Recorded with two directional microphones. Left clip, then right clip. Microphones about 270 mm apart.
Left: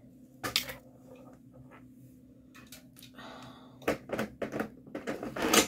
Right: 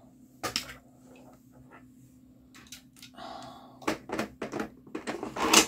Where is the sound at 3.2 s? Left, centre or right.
Right.